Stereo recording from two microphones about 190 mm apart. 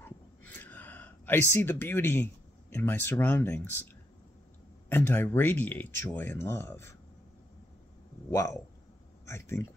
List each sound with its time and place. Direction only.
0.6 s speech: 10° left (ahead or behind)
4.8 s speech: 10° left (ahead or behind)
8.3 s a man's voice: 15° left (ahead or behind)